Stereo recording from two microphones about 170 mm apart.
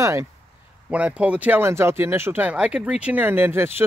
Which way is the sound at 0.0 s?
15° right (ahead or behind).